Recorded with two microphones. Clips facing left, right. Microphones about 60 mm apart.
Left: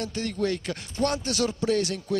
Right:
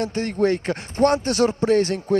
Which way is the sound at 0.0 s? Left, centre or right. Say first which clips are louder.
Right 7 dB; right.